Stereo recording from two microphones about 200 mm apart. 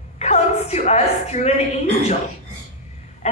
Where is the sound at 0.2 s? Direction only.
35° left (ahead or behind).